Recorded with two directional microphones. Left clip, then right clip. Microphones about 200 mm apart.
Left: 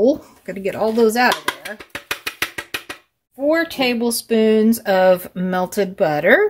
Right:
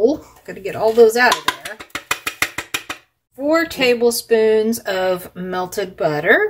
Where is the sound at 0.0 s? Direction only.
45° left (ahead or behind).